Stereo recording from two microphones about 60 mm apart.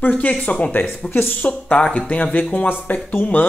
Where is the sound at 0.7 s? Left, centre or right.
Left.